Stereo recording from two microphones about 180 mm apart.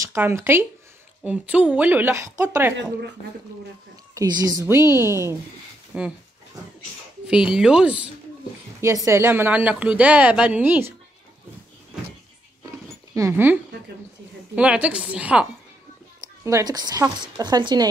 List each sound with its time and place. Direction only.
0.0 s speech: 15° right (ahead or behind)
4.1 s speech: 20° right (ahead or behind); by 6.1 s 5° right (ahead or behind)
7.2 s speech: 5° right (ahead or behind)
13.1 s speech: 15° right (ahead or behind)
16.4 s a woman's voice: 20° right (ahead or behind)